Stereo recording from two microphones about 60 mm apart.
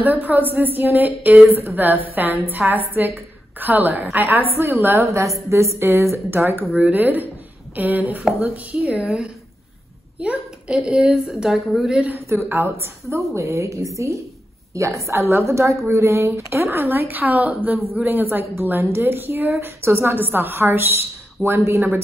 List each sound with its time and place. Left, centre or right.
0.0 s a woman's voice: right
5.0 s a woman's voice: right
10.2 s a child's voice: centre
12.3 s a woman's voice: right
16.6 s a woman's voice: right